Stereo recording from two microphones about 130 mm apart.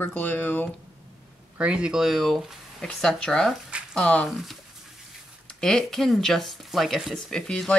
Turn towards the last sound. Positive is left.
turn(degrees=5)  # may be behind; listen again after turning